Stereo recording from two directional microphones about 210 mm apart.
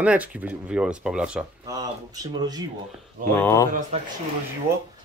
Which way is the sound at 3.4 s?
15° left (ahead or behind).